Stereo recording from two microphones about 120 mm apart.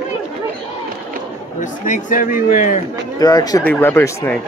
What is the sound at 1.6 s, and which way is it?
A man's voice, 90° left.